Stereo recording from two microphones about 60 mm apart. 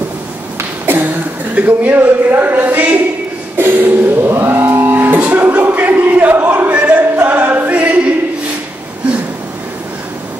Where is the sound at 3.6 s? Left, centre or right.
Right.